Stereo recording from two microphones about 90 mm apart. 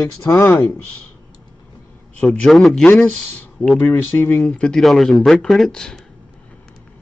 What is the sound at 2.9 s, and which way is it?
Speech, 20° left (ahead or behind).